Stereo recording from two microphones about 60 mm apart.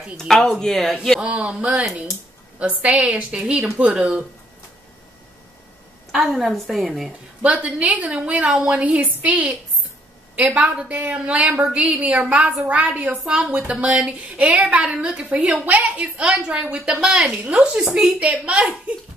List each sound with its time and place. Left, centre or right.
0.2 s speech: centre
1.2 s a woman's voice: right
6.1 s a woman's voice: centre
7.4 s a woman's voice: right
16.2 s a woman's voice: centre